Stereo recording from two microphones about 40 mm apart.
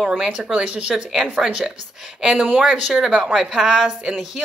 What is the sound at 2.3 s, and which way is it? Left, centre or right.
Speech, right.